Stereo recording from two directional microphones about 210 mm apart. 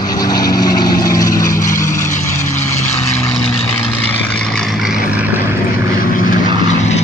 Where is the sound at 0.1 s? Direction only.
20° left (ahead or behind); by 5.6 s 10° right (ahead or behind).